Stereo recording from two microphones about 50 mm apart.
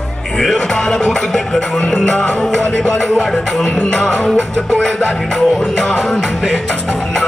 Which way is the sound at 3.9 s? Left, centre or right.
Centre.